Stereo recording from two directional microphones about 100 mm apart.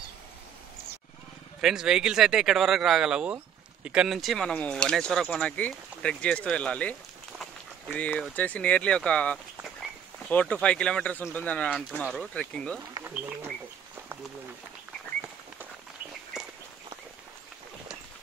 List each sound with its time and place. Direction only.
1.6 s speech: 5° right (ahead or behind)
13.0 s speech: 20° right (ahead or behind)
16.3 s walk: 5° right (ahead or behind)